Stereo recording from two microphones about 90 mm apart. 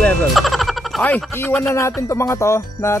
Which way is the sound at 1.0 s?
15° left (ahead or behind).